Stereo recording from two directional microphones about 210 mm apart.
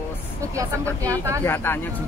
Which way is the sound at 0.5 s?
15° right (ahead or behind).